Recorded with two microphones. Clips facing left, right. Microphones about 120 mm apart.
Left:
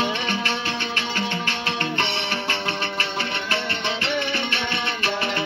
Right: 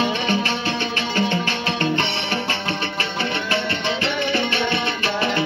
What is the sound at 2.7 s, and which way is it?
Music, 30° right (ahead or behind).